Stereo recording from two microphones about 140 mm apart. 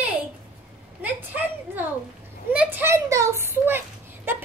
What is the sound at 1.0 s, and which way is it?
A child's voice, 15° right (ahead or behind).